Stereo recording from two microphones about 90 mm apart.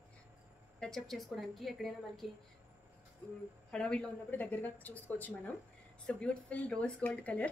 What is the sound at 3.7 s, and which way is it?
Speech, 10° left (ahead or behind).